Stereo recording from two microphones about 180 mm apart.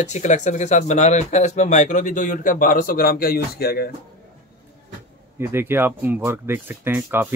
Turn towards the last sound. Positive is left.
turn(degrees=-10)  # may be behind; listen again after turning